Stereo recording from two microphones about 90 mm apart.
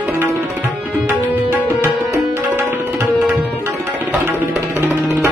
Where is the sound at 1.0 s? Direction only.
20° right (ahead or behind).